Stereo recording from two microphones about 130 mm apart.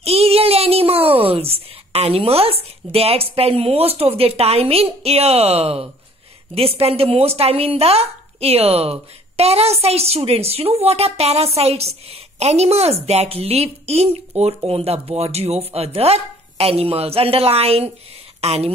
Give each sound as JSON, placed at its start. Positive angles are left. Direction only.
{"t": 0.0, "sound": "a child's voice", "side_deg": -50}